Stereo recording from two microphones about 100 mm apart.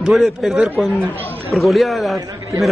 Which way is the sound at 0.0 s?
5° right (ahead or behind).